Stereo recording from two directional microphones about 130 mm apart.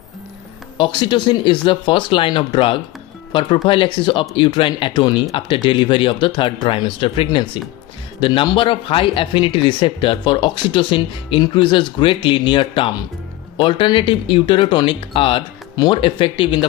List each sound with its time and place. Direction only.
0.7 s speech: 35° left (ahead or behind)